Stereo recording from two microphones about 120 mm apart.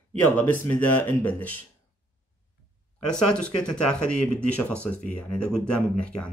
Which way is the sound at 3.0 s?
10° left (ahead or behind).